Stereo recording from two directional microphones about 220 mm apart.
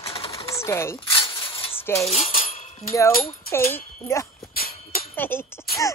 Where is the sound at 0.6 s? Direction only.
10° left (ahead or behind).